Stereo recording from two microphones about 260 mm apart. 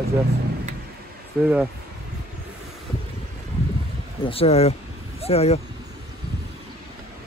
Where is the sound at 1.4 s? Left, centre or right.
Centre.